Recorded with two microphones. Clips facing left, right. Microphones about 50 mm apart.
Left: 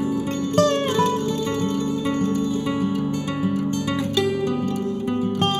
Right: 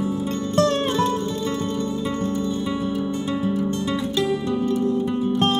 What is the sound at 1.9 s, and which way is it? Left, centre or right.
Music, left.